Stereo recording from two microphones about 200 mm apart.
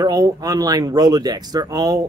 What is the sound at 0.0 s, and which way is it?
Speech, 20° right (ahead or behind).